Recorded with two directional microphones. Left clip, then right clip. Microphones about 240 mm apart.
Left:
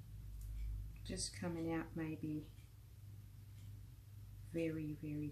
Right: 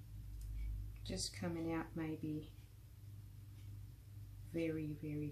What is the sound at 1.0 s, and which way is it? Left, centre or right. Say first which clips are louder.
Speech: right 1 dB; centre.